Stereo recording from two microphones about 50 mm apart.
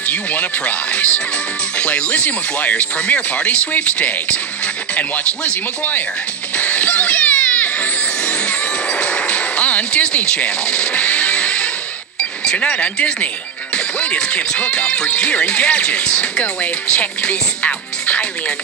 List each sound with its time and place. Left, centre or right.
0.1 s speech: left
6.6 s music: left
9.0 s speech: left